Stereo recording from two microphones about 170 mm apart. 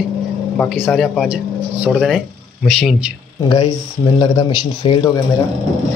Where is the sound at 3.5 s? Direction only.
25° left (ahead or behind).